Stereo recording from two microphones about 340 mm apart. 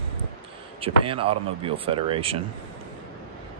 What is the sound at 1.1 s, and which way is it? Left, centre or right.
Speech, centre.